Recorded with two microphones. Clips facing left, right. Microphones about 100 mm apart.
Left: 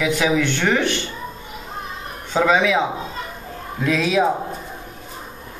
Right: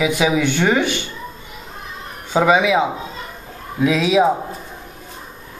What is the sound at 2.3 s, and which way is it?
Speech, 10° right (ahead or behind).